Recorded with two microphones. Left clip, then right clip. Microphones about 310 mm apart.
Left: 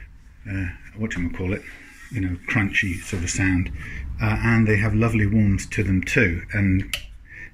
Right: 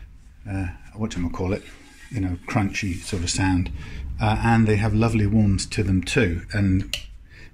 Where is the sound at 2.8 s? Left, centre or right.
Centre.